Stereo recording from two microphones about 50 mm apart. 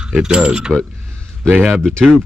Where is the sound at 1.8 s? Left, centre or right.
Centre.